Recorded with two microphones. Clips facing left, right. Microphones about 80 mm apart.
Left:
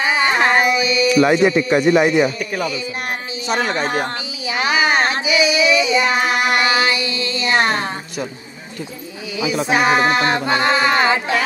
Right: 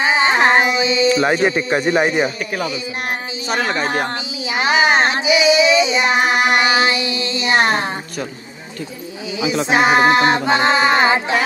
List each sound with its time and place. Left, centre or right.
0.0 s a sound: right
1.1 s speech: right
1.5 s child singing: right
2.0 s speech: right
4.5 s child singing: right
9.7 s child singing: right